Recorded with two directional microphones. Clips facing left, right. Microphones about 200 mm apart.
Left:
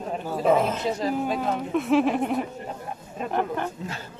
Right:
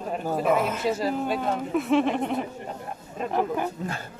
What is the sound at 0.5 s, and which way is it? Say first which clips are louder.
Speech: left 4 dB; 30° left (ahead or behind).